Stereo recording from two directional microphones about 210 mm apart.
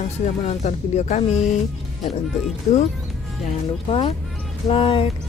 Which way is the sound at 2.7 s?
35° left (ahead or behind).